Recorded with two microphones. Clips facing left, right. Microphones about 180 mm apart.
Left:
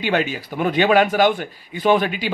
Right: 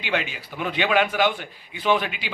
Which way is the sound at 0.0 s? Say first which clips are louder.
Left 6 dB; 45° left (ahead or behind).